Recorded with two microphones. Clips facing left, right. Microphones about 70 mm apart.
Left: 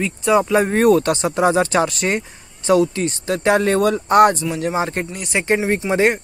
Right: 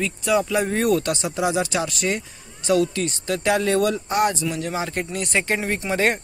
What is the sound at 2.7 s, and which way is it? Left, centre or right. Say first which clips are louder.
Speech: left 4 dB; left.